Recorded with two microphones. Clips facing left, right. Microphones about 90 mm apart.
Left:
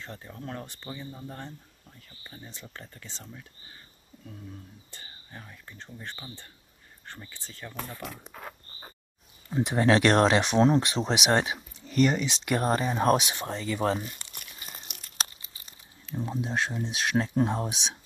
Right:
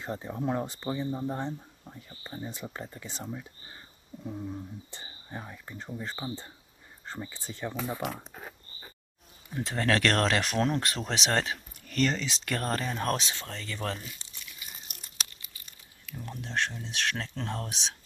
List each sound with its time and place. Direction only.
0.0 s speech: 20° right (ahead or behind)
9.5 s speech: 20° left (ahead or behind)
10.3 s speech: 25° left (ahead or behind)
11.1 s speech: 10° left (ahead or behind)
14.1 s crumpling: 60° left (ahead or behind)
15.1 s crumpling: 30° left (ahead or behind)
16.8 s speech: 15° left (ahead or behind)